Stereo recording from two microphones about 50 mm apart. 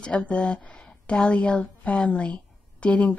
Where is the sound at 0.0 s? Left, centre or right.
Left.